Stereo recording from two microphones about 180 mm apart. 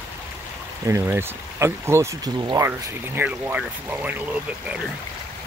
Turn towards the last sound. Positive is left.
turn(degrees=-10)  # may be behind; listen again after turning